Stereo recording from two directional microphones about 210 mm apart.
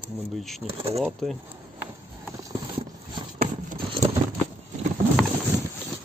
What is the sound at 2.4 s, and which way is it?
Clip-clop, 20° right (ahead or behind).